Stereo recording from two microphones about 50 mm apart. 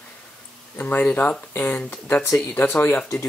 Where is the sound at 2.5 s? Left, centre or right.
Left.